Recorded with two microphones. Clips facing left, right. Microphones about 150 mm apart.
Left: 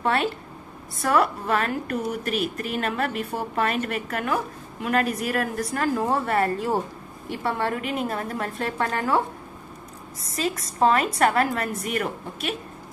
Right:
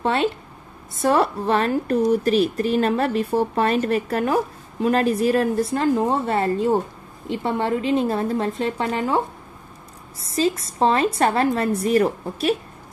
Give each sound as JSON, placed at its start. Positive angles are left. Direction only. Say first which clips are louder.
{"t": 0.0, "sound": "a woman's voice", "louder": "right 3 dB", "side_deg": -25}
{"t": 10.2, "sound": "a woman's voice", "louder": "right 6 dB", "side_deg": -30}